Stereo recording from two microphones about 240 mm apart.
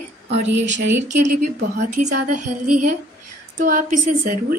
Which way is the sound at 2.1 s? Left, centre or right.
Right.